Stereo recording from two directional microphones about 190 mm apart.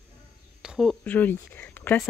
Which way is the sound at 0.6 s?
Centre (ahead or behind).